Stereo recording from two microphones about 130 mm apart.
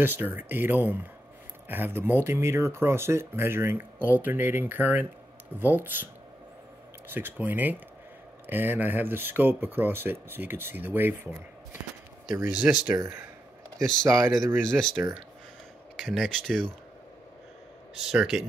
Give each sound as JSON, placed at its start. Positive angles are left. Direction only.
{"t": 0.0, "sound": "speech", "side_deg": -15}
{"t": 7.2, "sound": "speech", "side_deg": -15}
{"t": 12.4, "sound": "speech", "side_deg": -5}
{"t": 14.0, "sound": "speech", "side_deg": -20}
{"t": 16.0, "sound": "speech", "side_deg": 0}
{"t": 17.9, "sound": "speech", "side_deg": -5}